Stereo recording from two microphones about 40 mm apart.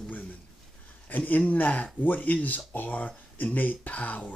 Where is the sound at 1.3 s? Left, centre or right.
Left.